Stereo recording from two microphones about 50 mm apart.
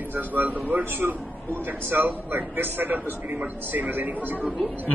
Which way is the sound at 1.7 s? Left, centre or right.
Right.